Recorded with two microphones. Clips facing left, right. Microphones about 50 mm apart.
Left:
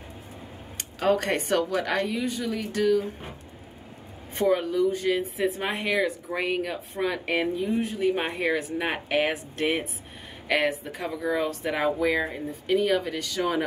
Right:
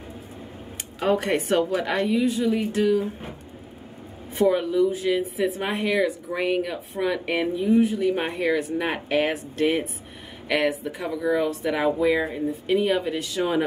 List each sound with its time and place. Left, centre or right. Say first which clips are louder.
1.0 s a woman's voice: right 1 dB; centre
1.6 s a woman's voice: right 2 dB; centre
4.4 s speech: right 2 dB; right
4.9 s speech: right 2 dB; centre
8.0 s speech: right 2 dB; centre
11.8 s a woman's voice: right 3 dB; centre
12.6 s speech: right 1 dB; centre